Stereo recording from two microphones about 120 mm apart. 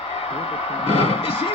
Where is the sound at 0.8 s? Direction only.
55° left (ahead or behind).